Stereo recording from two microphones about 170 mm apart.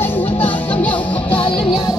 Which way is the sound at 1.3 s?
30° left (ahead or behind).